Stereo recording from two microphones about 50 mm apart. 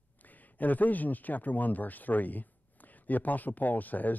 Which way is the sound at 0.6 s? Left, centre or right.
Left.